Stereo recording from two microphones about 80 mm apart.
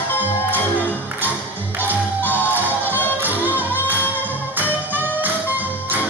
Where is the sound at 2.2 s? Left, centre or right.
Left.